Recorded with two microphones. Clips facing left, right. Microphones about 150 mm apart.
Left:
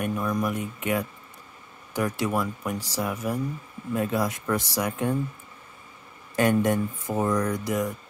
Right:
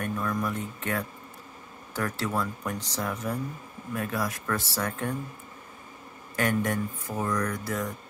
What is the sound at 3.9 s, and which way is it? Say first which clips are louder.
Speech: left 5 dB; 20° left (ahead or behind).